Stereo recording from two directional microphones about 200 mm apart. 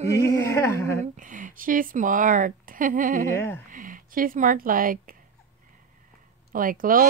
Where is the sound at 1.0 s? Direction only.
40° right (ahead or behind).